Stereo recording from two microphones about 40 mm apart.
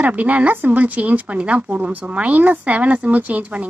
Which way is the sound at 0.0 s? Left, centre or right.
Right.